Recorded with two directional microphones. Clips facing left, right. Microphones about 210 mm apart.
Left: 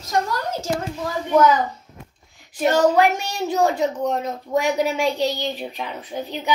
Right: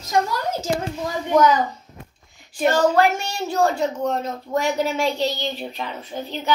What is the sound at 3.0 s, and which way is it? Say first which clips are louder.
Speech: left 1 dB; 20° left (ahead or behind).